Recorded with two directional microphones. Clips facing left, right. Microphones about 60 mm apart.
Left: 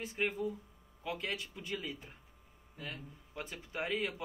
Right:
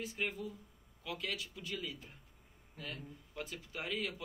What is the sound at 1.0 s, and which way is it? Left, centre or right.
Speech, left.